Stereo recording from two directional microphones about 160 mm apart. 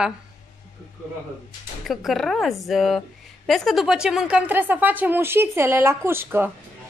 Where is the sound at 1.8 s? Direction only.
Centre (ahead or behind).